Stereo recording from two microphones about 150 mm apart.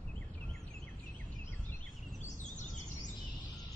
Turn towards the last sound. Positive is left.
turn(degrees=55)  # may be behind; listen again after turning